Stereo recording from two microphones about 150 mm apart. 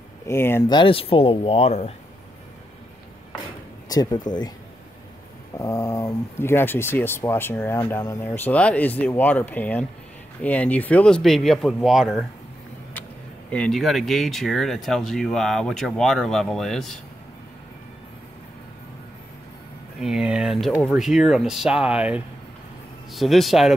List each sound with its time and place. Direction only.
0.3 s speech: 15° left (ahead or behind)
0.7 s speech: 35° left (ahead or behind)
3.9 s speech: 25° left (ahead or behind)
5.6 s speech: 20° left (ahead or behind); by 12.3 s centre (ahead or behind)
13.5 s speech: 5° left (ahead or behind)
20.0 s speech: 5° right (ahead or behind)